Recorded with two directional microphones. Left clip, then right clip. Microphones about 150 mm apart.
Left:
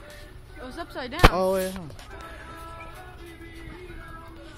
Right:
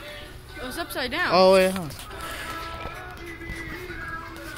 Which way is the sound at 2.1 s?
10° right (ahead or behind).